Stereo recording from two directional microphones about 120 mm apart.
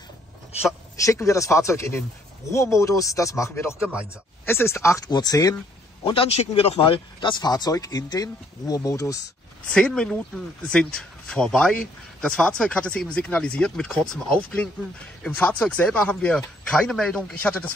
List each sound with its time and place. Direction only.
1.0 s speech: 25° left (ahead or behind)
6.0 s speech: 55° left (ahead or behind); by 9.2 s 30° left (ahead or behind)
9.7 s speech: 5° left (ahead or behind)